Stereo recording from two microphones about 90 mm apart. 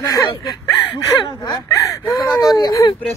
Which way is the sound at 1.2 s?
55° left (ahead or behind).